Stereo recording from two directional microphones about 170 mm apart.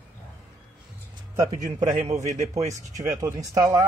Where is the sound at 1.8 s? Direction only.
40° right (ahead or behind).